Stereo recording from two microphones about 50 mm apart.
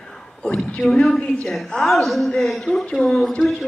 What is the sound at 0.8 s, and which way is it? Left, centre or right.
A man's voice, centre.